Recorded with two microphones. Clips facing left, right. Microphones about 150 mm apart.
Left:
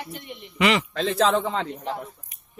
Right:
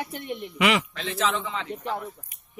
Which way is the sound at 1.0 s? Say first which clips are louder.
Left 6 dB; 55° left (ahead or behind).